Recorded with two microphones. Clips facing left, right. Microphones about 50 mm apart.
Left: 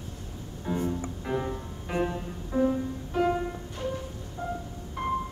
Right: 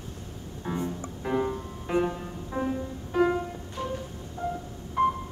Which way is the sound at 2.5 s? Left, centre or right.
Centre.